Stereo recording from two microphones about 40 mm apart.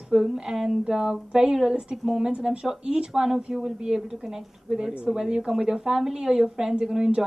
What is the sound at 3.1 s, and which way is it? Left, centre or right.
A woman's voice, centre.